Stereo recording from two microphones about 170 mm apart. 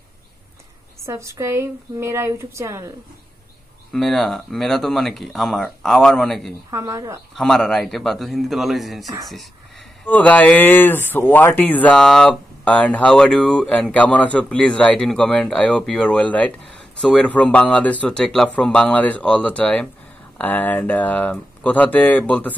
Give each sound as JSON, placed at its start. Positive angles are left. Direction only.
{"t": 1.0, "sound": "speech", "side_deg": -15}
{"t": 3.9, "sound": "speech", "side_deg": 0}
{"t": 6.7, "sound": "speech", "side_deg": -15}
{"t": 7.3, "sound": "speech", "side_deg": 0}